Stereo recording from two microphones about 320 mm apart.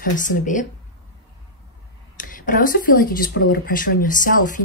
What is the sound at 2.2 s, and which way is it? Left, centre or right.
Speech, left.